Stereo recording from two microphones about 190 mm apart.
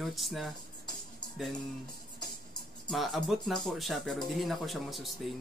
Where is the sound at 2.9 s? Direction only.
Centre (ahead or behind).